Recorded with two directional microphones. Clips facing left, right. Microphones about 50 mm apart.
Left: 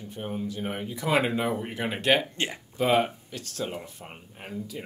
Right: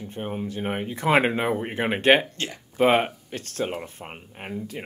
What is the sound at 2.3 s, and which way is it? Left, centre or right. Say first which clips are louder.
Speech: left 1 dB; centre.